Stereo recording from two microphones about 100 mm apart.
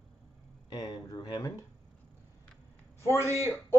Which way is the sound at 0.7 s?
40° left (ahead or behind).